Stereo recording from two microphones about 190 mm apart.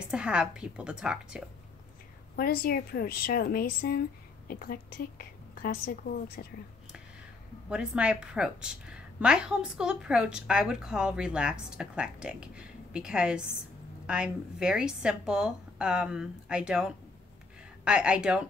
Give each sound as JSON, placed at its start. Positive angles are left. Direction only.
{"t": 0.1, "sound": "a woman's voice", "side_deg": -5}
{"t": 2.3, "sound": "a woman's voice", "side_deg": 55}
{"t": 7.7, "sound": "a woman's voice", "side_deg": -5}